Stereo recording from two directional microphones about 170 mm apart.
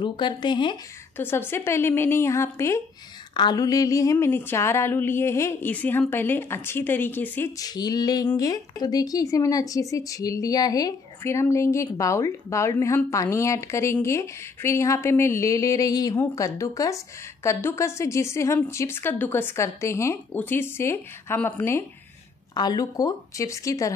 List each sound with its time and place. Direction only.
0.0 s speech: 25° left (ahead or behind)
1.1 s a sound: 10° left (ahead or behind)
22.5 s speech: 25° left (ahead or behind)